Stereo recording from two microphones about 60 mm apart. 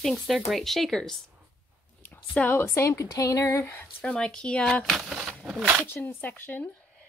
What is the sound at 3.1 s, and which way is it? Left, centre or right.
Speech, left.